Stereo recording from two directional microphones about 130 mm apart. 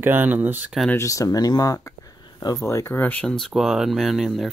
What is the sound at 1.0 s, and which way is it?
Speech, 25° left (ahead or behind).